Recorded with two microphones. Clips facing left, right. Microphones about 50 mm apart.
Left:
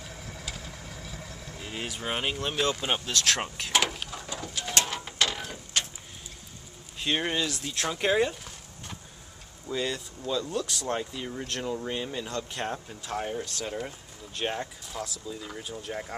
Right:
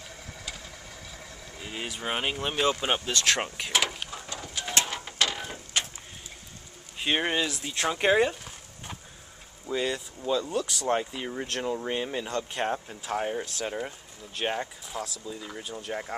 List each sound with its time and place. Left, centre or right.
0.0 s vehicle: centre
4.4 s bird: centre
4.8 s printer: centre
7.0 s speech: centre
8.0 s a sound: centre
9.7 s speech: centre
10.9 s speech: centre